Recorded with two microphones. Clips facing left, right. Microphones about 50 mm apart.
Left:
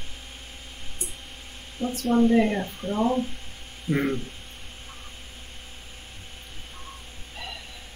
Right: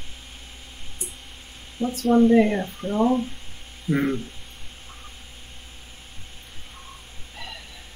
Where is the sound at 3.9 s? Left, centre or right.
Left.